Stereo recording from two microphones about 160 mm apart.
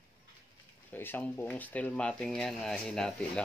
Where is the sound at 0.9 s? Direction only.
10° left (ahead or behind).